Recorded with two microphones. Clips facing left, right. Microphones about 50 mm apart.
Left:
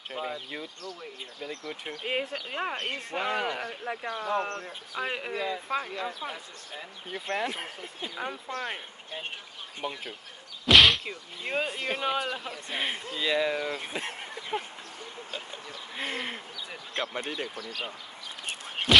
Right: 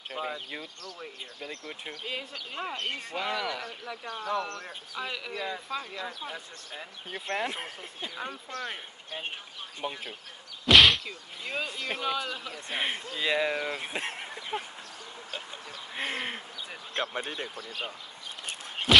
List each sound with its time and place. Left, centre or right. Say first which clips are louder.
0.2 s speech: even; centre
1.4 s speech: left 3 dB; right
1.9 s speech: left 6 dB; left
7.3 s speech: even; centre
8.0 s speech: left 2 dB; centre
8.5 s speech: left 2 dB; left
9.8 s speech: even; centre
10.7 s a sound: even; centre
11.1 s speech: left 3 dB; left
13.2 s speech: left 1 dB; centre
13.6 s speech: even; right
14.5 s speech: left 2 dB; left
16.0 s speech: right 1 dB; right
18.9 s a sound: even; centre